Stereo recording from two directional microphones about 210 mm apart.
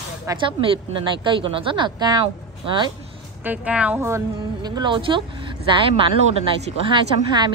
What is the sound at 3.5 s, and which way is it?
A woman's voice, 5° right (ahead or behind).